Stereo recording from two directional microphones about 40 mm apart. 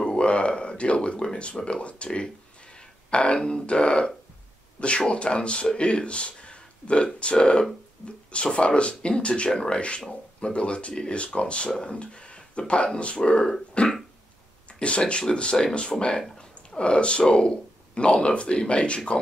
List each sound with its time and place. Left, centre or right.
0.2 s speech: left